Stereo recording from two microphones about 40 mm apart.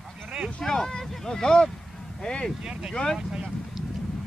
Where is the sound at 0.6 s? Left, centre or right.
Centre.